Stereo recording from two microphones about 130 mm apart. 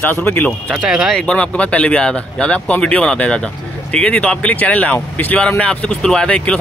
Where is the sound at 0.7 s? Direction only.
5° right (ahead or behind).